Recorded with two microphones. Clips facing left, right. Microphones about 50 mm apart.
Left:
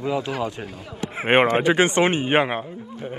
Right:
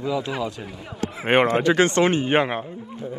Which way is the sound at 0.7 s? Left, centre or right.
Centre.